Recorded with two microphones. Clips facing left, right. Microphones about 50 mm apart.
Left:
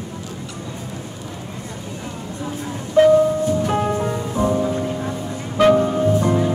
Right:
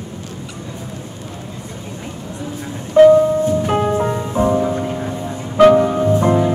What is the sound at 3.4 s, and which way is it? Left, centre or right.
Music, right.